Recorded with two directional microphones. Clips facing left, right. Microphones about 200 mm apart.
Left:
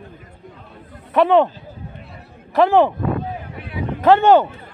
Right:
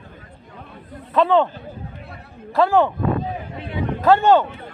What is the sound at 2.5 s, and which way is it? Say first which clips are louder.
Speech: left 3 dB; 20° left (ahead or behind).